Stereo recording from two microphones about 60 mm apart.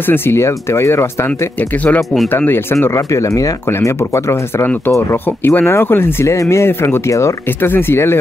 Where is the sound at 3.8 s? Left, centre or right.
Left.